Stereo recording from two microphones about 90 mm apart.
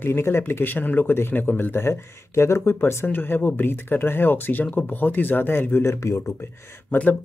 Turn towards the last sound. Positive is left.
turn(degrees=25)  # may be behind; listen again after turning